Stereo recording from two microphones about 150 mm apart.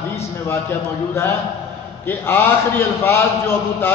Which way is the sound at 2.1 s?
15° left (ahead or behind).